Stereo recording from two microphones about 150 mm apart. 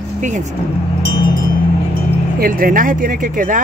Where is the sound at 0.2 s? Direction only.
50° right (ahead or behind).